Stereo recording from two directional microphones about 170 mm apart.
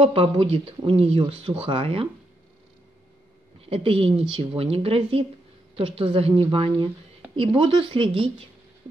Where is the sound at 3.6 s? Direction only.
35° right (ahead or behind).